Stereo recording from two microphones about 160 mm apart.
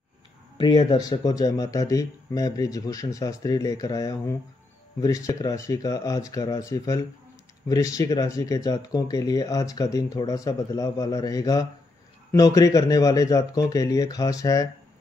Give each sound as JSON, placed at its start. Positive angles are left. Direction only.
{"t": 0.6, "sound": "speech", "side_deg": 30}